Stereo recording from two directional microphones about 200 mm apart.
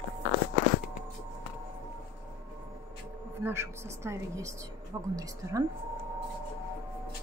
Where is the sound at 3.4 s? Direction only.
10° right (ahead or behind).